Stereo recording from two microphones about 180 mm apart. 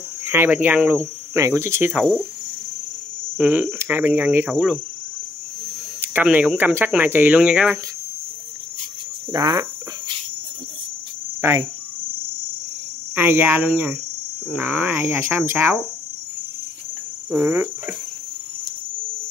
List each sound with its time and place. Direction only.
0.2 s cricket: 10° right (ahead or behind)
1.3 s speech: 15° right (ahead or behind)
1.9 s cricket: 5° right (ahead or behind)
3.3 s speech: 10° right (ahead or behind)
5.9 s speech: 10° right (ahead or behind)
9.3 s speech: 20° right (ahead or behind)
11.4 s speech: 15° right (ahead or behind)
13.1 s speech: 10° right (ahead or behind)
17.3 s speech: 15° right (ahead or behind)